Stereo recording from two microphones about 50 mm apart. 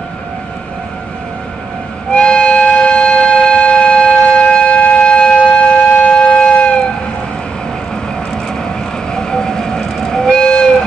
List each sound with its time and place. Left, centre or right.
2.0 s music: centre
9.1 s train: centre